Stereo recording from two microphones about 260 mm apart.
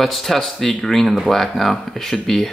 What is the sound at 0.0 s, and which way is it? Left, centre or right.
Speech, centre.